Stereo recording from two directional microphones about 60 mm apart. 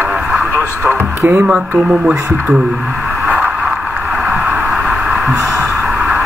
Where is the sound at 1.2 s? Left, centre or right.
Right.